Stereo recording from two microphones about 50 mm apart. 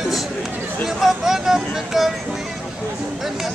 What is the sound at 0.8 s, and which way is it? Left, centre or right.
Speech, centre.